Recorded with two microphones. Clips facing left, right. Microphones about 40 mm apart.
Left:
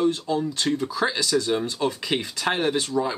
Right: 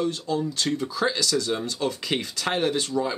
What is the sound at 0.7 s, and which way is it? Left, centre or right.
A man's voice, centre.